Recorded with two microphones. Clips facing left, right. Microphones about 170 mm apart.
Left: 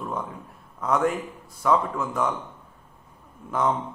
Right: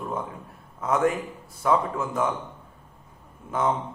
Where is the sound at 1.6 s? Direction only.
20° right (ahead or behind).